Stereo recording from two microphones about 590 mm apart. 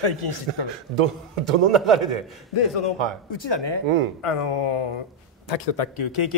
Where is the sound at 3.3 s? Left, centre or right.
Left.